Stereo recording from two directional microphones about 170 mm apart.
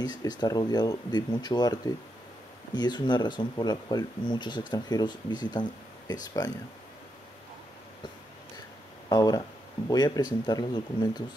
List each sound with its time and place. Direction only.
0.0 s speech: 25° left (ahead or behind)
9.1 s speech: 20° left (ahead or behind)